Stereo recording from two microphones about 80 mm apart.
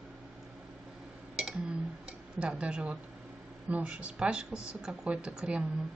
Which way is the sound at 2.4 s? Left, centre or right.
Centre.